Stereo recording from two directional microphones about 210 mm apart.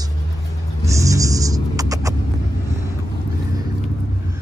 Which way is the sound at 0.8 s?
15° right (ahead or behind).